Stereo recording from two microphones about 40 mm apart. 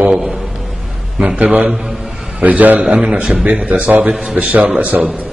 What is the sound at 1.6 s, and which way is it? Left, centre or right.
Speech, centre.